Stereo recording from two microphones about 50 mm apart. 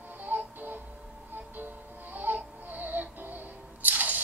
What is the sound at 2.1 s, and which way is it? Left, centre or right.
Music, right.